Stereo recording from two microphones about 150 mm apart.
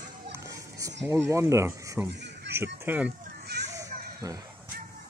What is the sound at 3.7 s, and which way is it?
Children playing, 20° right (ahead or behind).